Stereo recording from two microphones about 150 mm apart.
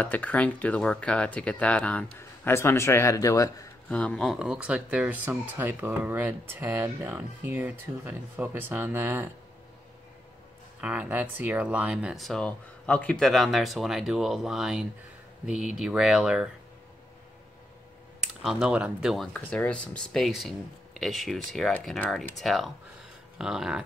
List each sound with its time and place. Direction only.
0.0 s speech: 10° left (ahead or behind)
3.9 s speech: 5° left (ahead or behind); by 9.3 s 15° right (ahead or behind)
10.8 s speech: 10° right (ahead or behind)
18.4 s speech: 5° right (ahead or behind)